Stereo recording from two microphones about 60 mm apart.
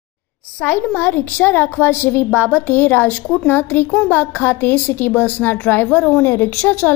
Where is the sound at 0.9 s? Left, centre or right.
Left.